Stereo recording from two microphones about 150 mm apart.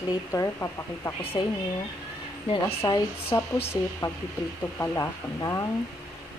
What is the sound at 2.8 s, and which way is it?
Speech, 20° left (ahead or behind).